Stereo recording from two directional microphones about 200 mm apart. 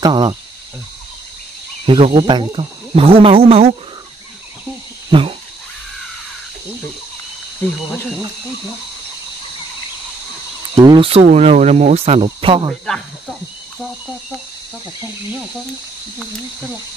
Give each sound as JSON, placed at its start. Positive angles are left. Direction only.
{"t": 0.0, "sound": "speech", "side_deg": -20}
{"t": 1.9, "sound": "speech", "side_deg": -25}
{"t": 5.1, "sound": "speech", "side_deg": -25}
{"t": 10.8, "sound": "speech", "side_deg": -25}
{"t": 12.8, "sound": "cricket", "side_deg": 0}